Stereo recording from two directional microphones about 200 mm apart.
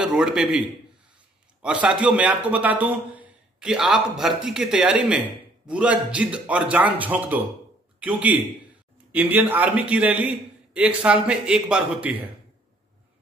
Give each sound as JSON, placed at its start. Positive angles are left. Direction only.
{"t": 0.0, "sound": "a man's voice", "side_deg": -5}
{"t": 1.6, "sound": "a man's voice", "side_deg": -5}